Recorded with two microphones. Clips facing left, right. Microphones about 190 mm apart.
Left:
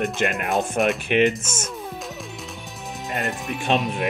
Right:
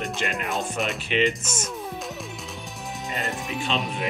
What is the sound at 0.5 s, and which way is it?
Speech, centre (ahead or behind).